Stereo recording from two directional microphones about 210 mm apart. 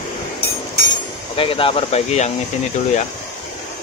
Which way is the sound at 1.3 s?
25° left (ahead or behind).